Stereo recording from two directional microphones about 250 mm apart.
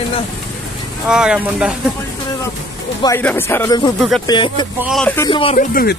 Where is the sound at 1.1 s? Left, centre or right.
Centre.